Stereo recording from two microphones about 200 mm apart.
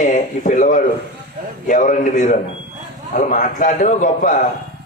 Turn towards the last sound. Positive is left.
turn(degrees=40)  # may be behind; listen again after turning